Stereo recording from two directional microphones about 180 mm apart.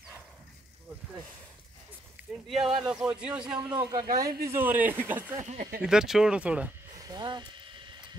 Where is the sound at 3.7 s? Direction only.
20° right (ahead or behind).